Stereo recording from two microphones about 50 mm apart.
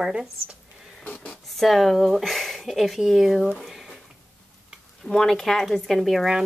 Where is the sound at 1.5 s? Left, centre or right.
Centre.